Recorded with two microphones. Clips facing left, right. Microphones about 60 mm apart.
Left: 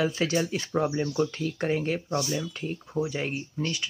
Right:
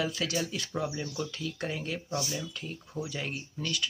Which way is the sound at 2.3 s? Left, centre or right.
Left.